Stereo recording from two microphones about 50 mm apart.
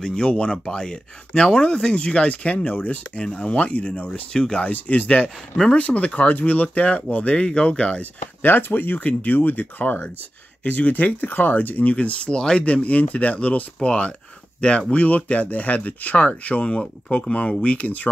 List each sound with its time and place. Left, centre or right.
0.0 s speech: centre
4.7 s speech: left
8.4 s speech: left
12.3 s speech: centre; by 18.0 s left